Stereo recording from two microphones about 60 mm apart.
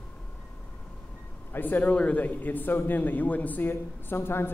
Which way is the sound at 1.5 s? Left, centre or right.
Left.